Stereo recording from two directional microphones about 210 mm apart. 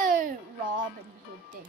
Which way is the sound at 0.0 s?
40° right (ahead or behind).